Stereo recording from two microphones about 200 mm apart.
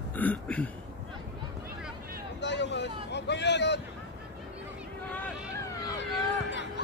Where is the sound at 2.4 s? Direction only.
60° left (ahead or behind).